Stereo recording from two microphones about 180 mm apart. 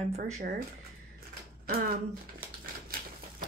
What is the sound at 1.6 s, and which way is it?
Speech, 50° right (ahead or behind).